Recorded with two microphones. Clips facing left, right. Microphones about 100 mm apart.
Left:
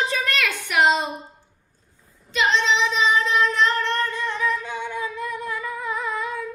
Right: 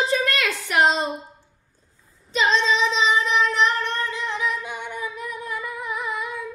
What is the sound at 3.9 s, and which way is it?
Singing, 15° right (ahead or behind).